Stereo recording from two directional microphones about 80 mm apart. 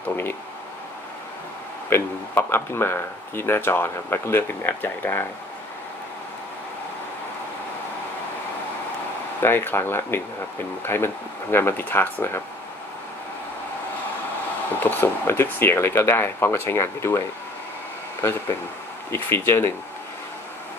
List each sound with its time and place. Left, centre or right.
0.1 s speech: left
1.9 s speech: left
9.4 s speech: left
14.8 s speech: left
19.0 s speech: left